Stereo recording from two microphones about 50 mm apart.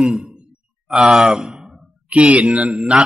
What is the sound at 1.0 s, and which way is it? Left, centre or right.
Speech, centre.